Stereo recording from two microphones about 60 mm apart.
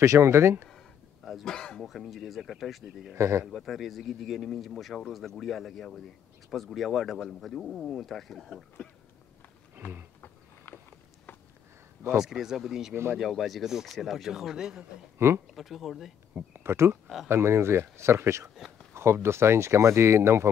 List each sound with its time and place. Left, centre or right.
0.0 s speech: right
1.2 s throat clearing: centre
1.5 s speech: centre
3.2 s speech: right
3.4 s speech: centre
10.2 s a sound: left
12.2 s speech: centre
15.1 s speech: right
15.5 s speech: centre
16.5 s speech: right